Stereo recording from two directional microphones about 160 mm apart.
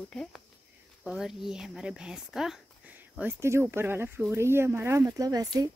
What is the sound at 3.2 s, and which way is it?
Speech, 15° right (ahead or behind).